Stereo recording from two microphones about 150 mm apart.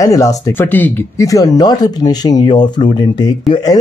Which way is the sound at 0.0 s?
25° left (ahead or behind).